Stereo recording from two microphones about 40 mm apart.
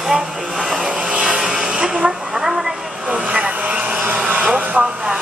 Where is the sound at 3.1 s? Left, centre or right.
Right.